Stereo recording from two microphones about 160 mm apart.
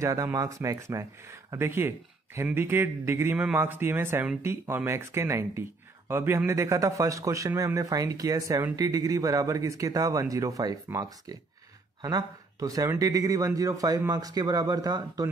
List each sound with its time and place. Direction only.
0.0 s a man's voice: 20° right (ahead or behind)